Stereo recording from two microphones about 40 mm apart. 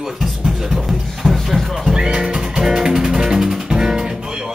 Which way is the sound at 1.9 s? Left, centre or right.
Centre.